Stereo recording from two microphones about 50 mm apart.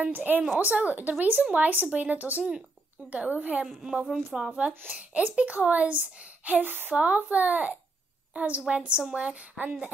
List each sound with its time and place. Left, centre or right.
0.0 s speech: right
4.1 s a woman's voice: centre
4.5 s speech: right
6.9 s speech: right